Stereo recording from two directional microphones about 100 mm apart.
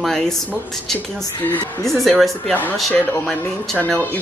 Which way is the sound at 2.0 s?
Centre (ahead or behind).